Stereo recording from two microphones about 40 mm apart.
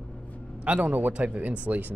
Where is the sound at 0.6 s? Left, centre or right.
Right.